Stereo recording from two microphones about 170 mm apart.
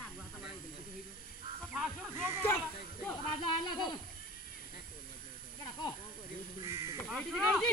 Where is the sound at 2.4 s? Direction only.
10° left (ahead or behind).